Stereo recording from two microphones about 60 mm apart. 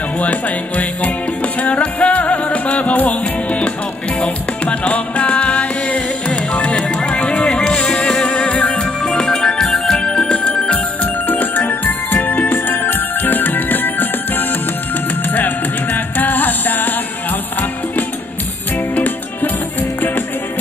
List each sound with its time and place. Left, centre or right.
0.2 s music: left
18.9 s music: left